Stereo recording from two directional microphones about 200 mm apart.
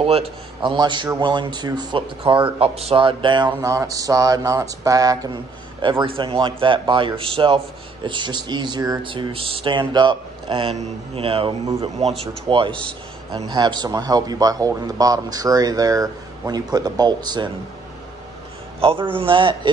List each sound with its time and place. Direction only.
0.0 s a man's voice: 25° right (ahead or behind)
18.8 s a man's voice: 30° right (ahead or behind)